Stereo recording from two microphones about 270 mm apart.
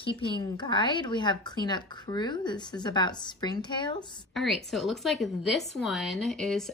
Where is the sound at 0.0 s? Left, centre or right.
Centre.